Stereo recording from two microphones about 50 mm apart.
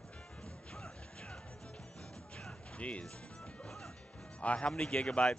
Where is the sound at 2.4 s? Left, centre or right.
Left.